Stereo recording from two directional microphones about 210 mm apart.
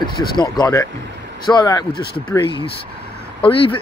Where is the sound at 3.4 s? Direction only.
25° left (ahead or behind).